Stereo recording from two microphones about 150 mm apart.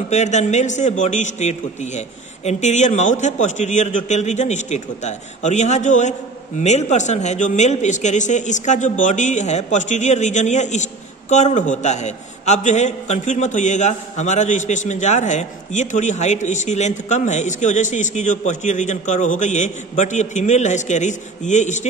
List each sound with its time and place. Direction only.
0.1 s a man's voice: 50° left (ahead or behind)